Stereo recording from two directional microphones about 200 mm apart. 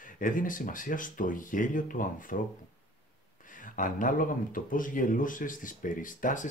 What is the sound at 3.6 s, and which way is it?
Speech, 40° left (ahead or behind).